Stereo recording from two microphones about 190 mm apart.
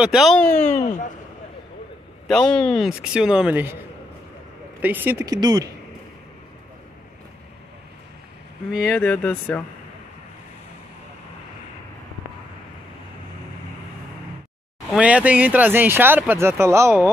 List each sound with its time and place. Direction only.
0.0 s speech: centre (ahead or behind)
0.7 s speech: 40° left (ahead or behind)
2.2 s speech: 5° left (ahead or behind)
4.8 s speech: 10° right (ahead or behind)
8.8 s speech: 10° left (ahead or behind)
15.0 s speech: 5° right (ahead or behind)